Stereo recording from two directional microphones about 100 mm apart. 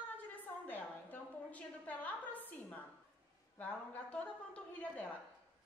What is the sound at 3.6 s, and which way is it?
A woman's voice, 10° left (ahead or behind).